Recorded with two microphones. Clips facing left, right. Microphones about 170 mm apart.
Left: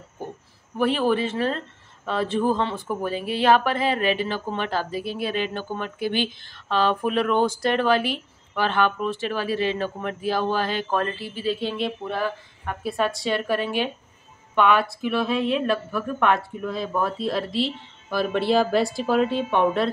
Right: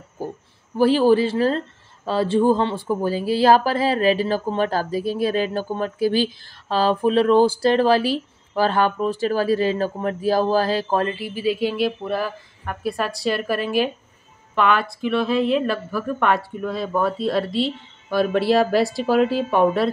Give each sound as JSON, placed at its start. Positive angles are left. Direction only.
{"t": 0.7, "sound": "speech", "side_deg": -30}
{"t": 11.1, "sound": "a woman's voice", "side_deg": -10}